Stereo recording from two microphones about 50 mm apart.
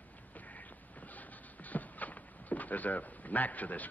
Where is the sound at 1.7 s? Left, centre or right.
Left.